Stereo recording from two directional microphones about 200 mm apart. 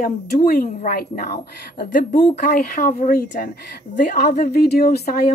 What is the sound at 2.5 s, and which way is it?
A woman's voice, 45° left (ahead or behind).